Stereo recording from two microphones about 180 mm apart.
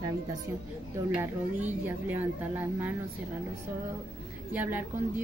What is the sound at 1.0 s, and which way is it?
Speech, 15° right (ahead or behind).